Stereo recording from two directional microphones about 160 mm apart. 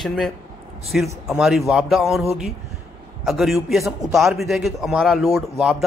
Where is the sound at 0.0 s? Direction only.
Centre (ahead or behind).